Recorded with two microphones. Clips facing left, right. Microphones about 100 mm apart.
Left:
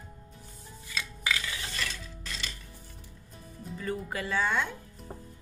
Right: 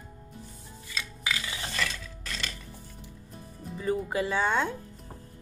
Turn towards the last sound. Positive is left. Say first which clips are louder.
# right 3 dB
turn(degrees=-25)  # may be behind; listen again after turning